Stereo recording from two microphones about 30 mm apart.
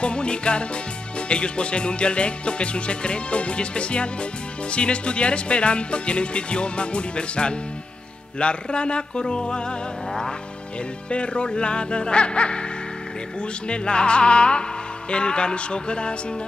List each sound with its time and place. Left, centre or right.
0.0 s music: left
11.1 s music: left
13.7 s music: left